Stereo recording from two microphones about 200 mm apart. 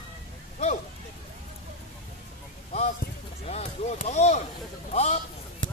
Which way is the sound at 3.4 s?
35° left (ahead or behind).